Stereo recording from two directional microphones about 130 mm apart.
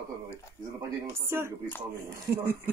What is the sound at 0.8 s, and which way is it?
Speech, 20° right (ahead or behind).